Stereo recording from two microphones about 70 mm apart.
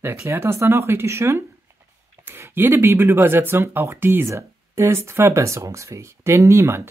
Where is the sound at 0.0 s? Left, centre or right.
Right.